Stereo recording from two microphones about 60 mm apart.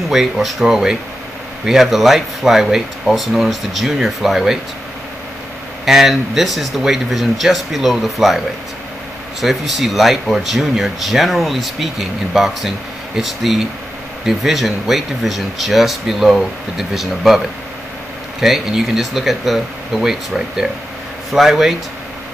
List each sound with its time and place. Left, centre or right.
0.1 s speech: centre
5.9 s speech: centre
9.4 s speech: centre
18.4 s speech: centre